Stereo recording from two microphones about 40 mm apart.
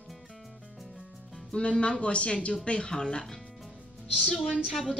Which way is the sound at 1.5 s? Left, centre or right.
Left.